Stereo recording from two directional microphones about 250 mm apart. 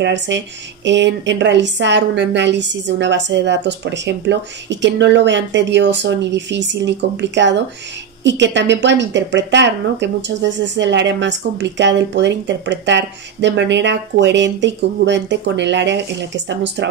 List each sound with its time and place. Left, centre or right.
0.0 s a woman's voice: right